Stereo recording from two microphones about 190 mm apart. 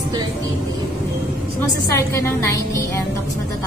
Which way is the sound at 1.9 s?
15° left (ahead or behind).